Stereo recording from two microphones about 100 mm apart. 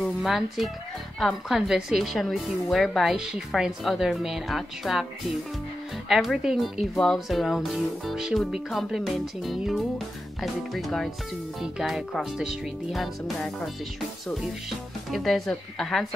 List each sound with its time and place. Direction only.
0.2 s speech: centre (ahead or behind)
6.0 s speech: centre (ahead or behind)
15.0 s speech: centre (ahead or behind)